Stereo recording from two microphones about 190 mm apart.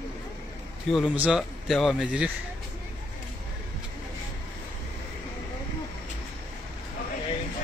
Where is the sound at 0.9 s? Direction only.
5° right (ahead or behind).